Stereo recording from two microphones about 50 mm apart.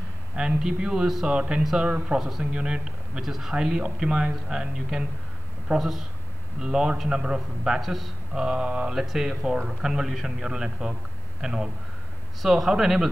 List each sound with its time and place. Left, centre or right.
0.4 s speech: centre
1.2 s mantra: centre
2.1 s speech: centre
7.8 s speech: centre
8.4 s mantra: centre
9.0 s speech: centre
12.4 s speech: centre